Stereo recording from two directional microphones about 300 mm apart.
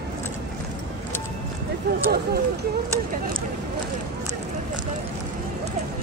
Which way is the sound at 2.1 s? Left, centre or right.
Right.